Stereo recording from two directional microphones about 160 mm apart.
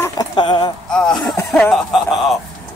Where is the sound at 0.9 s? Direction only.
5° left (ahead or behind).